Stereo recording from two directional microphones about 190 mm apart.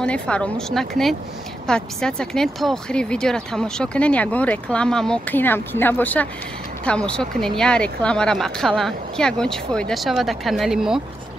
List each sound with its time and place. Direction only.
0.0 s speech: 5° left (ahead or behind)